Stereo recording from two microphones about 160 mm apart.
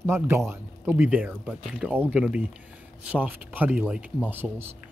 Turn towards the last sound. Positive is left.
turn(degrees=-15)  # may be behind; listen again after turning